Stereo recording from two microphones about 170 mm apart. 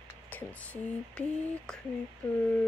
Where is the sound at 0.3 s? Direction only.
10° left (ahead or behind).